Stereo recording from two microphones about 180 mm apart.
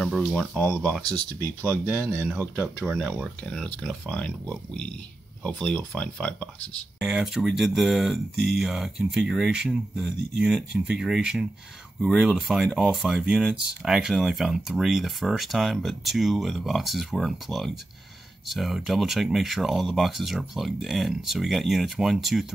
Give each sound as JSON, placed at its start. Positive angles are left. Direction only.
{"t": 0.0, "sound": "speech", "side_deg": 0}
{"t": 1.7, "sound": "speech", "side_deg": -15}